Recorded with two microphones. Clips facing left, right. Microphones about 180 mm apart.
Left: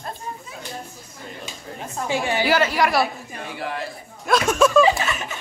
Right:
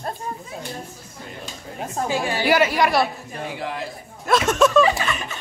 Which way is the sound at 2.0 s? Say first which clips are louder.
Left 1 dB; 20° left (ahead or behind).